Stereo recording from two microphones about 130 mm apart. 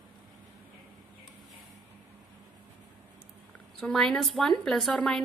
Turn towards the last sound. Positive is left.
turn(degrees=5)  # may be behind; listen again after turning